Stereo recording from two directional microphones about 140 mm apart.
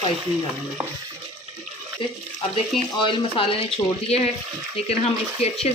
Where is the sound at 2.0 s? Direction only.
35° left (ahead or behind).